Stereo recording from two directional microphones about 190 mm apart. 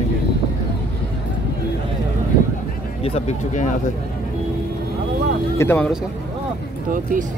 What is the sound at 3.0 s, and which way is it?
Speech, 35° left (ahead or behind).